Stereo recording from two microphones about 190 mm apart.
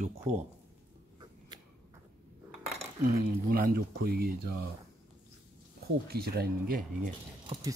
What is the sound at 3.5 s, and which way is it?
Speech, 50° right (ahead or behind).